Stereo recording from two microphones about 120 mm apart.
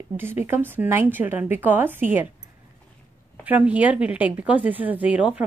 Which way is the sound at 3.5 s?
10° right (ahead or behind).